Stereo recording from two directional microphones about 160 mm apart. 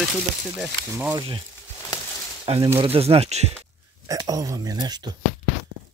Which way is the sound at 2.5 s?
35° right (ahead or behind).